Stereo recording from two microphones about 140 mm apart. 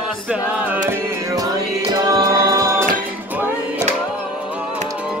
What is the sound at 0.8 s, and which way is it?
Music, 25° right (ahead or behind).